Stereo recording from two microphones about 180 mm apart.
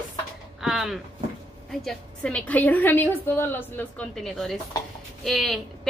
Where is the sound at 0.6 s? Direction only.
Centre (ahead or behind).